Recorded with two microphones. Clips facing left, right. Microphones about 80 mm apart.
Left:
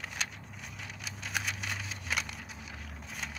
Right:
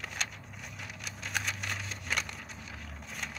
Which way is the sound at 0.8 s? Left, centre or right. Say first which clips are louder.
Even; centre.